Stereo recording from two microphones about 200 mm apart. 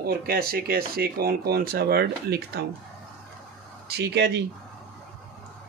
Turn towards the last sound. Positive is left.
turn(degrees=-60)  # may be behind; listen again after turning